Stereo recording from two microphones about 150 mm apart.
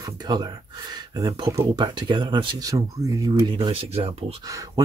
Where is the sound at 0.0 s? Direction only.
25° right (ahead or behind).